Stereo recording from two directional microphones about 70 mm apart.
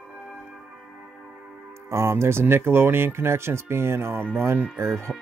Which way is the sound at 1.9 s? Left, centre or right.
Right.